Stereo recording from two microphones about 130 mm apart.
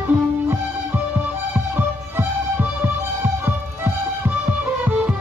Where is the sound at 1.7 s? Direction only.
15° right (ahead or behind).